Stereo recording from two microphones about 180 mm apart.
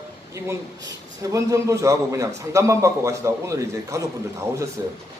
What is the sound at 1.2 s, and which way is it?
A man's voice, 20° right (ahead or behind).